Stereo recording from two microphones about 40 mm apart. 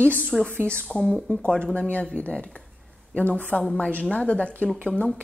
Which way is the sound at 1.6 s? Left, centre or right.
Left.